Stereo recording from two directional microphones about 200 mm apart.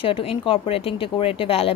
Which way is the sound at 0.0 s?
25° left (ahead or behind).